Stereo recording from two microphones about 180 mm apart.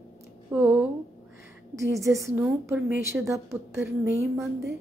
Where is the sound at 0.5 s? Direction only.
10° right (ahead or behind).